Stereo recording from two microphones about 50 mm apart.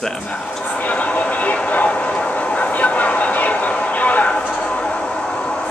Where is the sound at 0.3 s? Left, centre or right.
Left.